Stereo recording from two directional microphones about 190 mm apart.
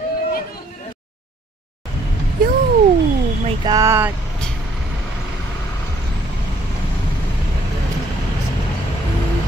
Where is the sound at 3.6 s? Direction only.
20° right (ahead or behind).